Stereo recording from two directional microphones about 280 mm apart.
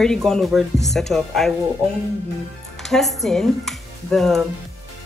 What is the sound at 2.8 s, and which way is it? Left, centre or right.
Speech, centre.